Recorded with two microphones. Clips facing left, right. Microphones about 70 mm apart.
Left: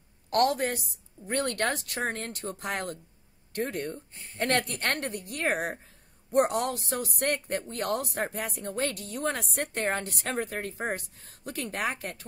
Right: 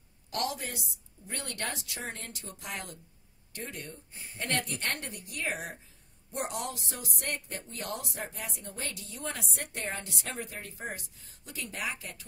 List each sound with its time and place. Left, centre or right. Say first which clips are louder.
0.3 s speech: left 10 dB; left
4.1 s speech: even; centre
4.4 s speech: left 6 dB; left